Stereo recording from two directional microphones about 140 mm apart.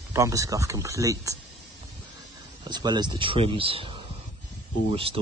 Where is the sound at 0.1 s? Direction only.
20° right (ahead or behind).